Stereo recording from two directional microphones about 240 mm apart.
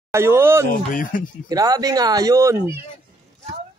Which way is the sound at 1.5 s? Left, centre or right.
Centre.